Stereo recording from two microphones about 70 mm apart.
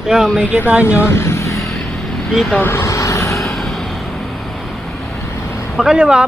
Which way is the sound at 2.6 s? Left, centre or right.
Left.